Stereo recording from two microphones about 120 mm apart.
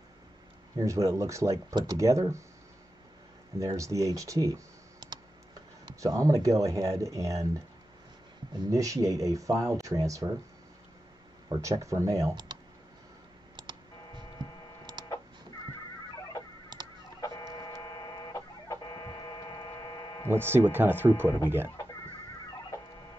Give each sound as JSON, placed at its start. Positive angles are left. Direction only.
{"t": 0.7, "sound": "speech", "side_deg": -25}
{"t": 3.5, "sound": "speech", "side_deg": -25}
{"t": 5.9, "sound": "speech", "side_deg": -30}
{"t": 8.5, "sound": "speech", "side_deg": -30}
{"t": 11.4, "sound": "speech", "side_deg": -30}
{"t": 17.2, "sound": "chicken", "side_deg": 30}
{"t": 20.2, "sound": "speech", "side_deg": -20}